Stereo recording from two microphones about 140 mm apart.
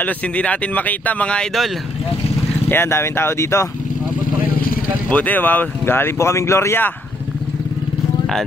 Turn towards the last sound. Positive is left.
turn(degrees=15)  # may be behind; listen again after turning